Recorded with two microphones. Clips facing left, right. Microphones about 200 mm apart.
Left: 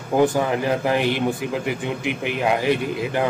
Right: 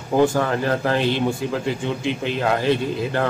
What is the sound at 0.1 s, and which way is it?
Speech, 15° left (ahead or behind).